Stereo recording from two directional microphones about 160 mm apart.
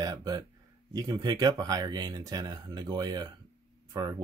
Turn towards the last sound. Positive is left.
turn(degrees=-25)  # may be behind; listen again after turning